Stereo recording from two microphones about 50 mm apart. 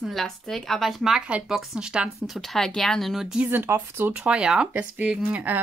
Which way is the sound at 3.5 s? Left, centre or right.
Right.